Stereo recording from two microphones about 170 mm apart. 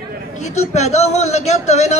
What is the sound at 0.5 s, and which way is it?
Speech, 40° left (ahead or behind).